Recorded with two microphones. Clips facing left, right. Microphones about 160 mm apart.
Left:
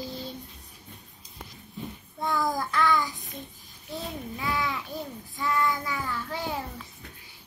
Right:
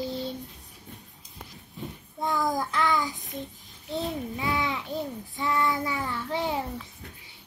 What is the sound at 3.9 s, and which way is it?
Babbling, 20° right (ahead or behind).